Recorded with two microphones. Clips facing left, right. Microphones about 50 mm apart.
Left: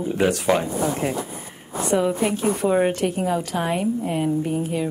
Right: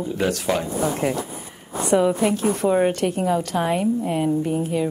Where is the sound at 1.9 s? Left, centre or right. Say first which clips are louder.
Right 3 dB; centre.